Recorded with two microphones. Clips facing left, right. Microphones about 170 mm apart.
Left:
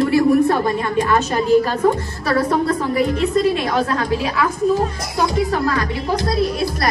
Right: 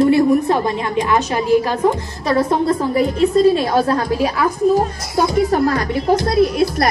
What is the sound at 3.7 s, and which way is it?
Speech, 30° right (ahead or behind).